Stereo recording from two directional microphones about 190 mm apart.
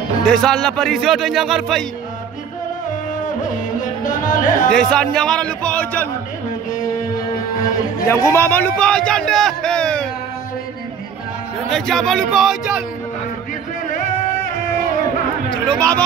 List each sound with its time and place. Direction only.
0.3 s a man's voice: centre (ahead or behind)
3.8 s speech: 45° left (ahead or behind)
4.7 s a man's voice: 5° left (ahead or behind)
8.1 s a man's voice: 15° left (ahead or behind)
11.7 s a man's voice: 5° left (ahead or behind)
15.5 s a man's voice: 5° left (ahead or behind)